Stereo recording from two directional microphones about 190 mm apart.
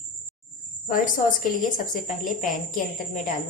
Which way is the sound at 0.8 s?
45° left (ahead or behind).